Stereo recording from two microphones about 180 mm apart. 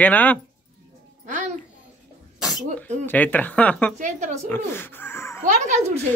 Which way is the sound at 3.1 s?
10° left (ahead or behind).